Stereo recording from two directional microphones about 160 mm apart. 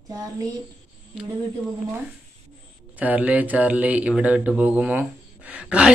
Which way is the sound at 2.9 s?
10° right (ahead or behind).